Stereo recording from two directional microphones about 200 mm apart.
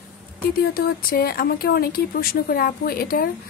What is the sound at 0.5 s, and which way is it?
A woman's voice, 50° left (ahead or behind).